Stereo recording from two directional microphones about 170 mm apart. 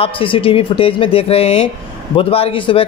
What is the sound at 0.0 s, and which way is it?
A man's voice, 30° left (ahead or behind).